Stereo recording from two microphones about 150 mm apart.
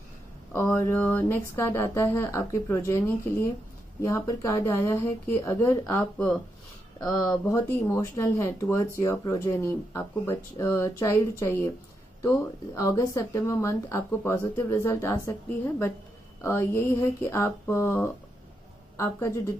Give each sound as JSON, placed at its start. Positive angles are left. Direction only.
{"t": 0.5, "sound": "speech", "side_deg": 15}